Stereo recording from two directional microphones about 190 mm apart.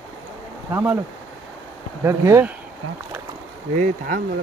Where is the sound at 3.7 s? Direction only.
45° right (ahead or behind).